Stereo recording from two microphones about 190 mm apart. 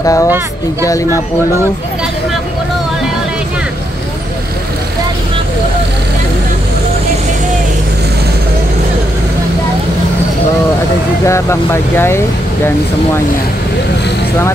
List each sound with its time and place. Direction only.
0.0 s speech: 15° left (ahead or behind)
11.2 s speech: 15° left (ahead or behind)